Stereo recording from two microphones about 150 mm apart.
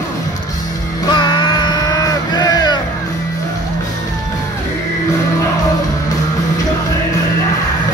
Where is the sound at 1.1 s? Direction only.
30° left (ahead or behind).